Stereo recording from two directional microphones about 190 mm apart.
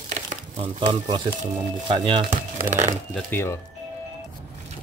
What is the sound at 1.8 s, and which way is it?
Speech, 25° right (ahead or behind).